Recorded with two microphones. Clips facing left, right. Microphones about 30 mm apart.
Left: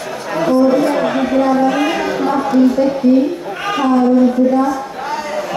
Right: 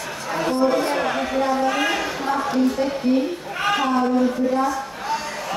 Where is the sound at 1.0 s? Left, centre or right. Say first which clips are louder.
Left 7 dB; centre.